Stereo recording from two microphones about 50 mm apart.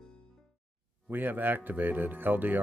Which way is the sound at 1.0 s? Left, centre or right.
Right.